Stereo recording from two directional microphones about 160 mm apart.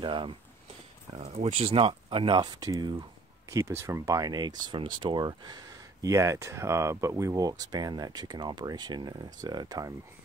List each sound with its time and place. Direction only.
0.0 s speech: 30° right (ahead or behind)
1.1 s speech: 45° right (ahead or behind); by 9.9 s 25° right (ahead or behind)